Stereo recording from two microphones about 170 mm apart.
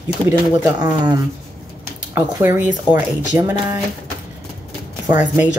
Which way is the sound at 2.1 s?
15° right (ahead or behind).